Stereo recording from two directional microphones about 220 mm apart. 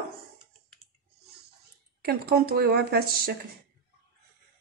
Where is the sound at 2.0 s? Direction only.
45° right (ahead or behind).